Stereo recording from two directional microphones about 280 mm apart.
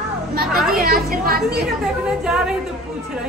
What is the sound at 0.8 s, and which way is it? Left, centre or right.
Speech, right.